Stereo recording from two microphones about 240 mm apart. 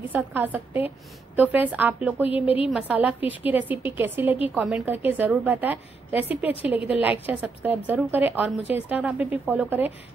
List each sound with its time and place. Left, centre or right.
0.1 s a woman's voice: centre
2.4 s a woman's voice: left
2.7 s a woman's voice: centre